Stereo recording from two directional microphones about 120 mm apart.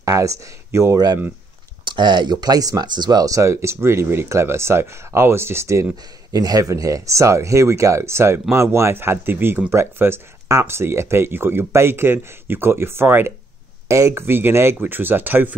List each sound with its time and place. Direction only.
0.0 s speech: 25° right (ahead or behind)